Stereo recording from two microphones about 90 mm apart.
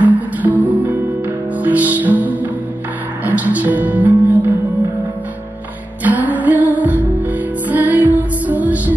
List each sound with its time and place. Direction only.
0.0 s music: 20° right (ahead or behind)
6.0 s music: 20° right (ahead or behind)